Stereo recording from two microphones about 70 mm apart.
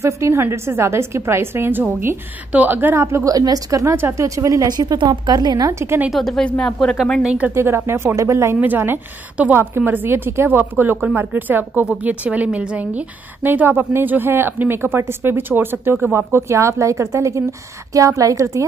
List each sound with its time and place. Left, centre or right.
0.0 s a woman's voice: right
3.0 s a woman's voice: right
3.3 s speech: right
3.9 s speech: right
4.6 s speech: right
5.7 s speech: right
6.0 s speech: centre
7.2 s a woman's voice: centre
7.5 s a woman's voice: right
8.5 s a woman's voice: right